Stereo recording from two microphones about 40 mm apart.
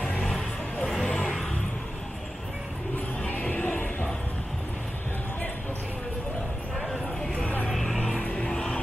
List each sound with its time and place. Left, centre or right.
3.3 s music: left
7.7 s music: centre
8.2 s music: left
8.5 s vehicle: centre